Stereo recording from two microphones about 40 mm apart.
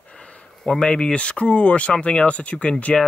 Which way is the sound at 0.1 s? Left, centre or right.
Left.